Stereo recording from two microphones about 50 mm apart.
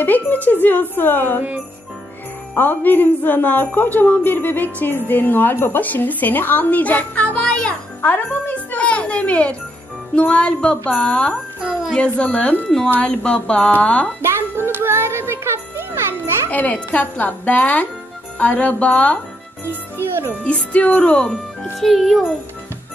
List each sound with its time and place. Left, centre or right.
0.0 s speech: left
2.5 s speech: left
8.0 s a child's voice: left
12.6 s speech: centre
13.0 s speech: left
14.2 s music: right
16.4 s speech: left
20.0 s speech: right
20.4 s speech: left
21.7 s a child's voice: centre